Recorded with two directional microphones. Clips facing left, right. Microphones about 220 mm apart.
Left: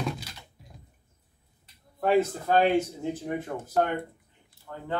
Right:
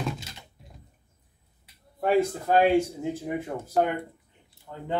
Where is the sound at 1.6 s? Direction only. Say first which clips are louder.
Even; 10° right (ahead or behind).